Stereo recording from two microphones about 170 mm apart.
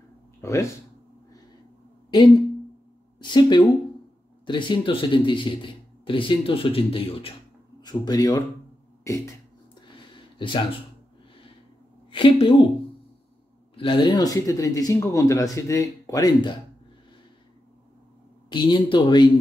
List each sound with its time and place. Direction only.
0.4 s speech: 15° left (ahead or behind)
3.2 s speech: 25° left (ahead or behind)
9.0 s a sound: 20° left (ahead or behind)
9.8 s a sound: 30° left (ahead or behind)
12.1 s a woman's voice: 30° left (ahead or behind)
13.7 s speech: 30° left (ahead or behind)
18.5 s speech: 25° left (ahead or behind)